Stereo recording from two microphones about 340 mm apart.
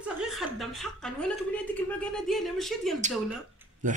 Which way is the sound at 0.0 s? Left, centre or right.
Centre.